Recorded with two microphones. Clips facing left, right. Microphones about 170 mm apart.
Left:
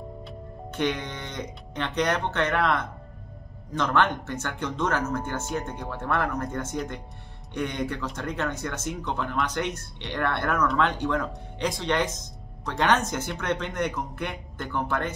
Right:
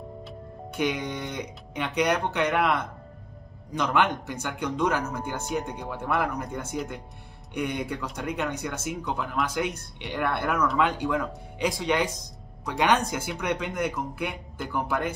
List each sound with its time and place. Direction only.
0.2 s music: centre (ahead or behind)
1.9 s speech: 10° right (ahead or behind)
3.9 s speech: 15° right (ahead or behind)
5.4 s speech: centre (ahead or behind)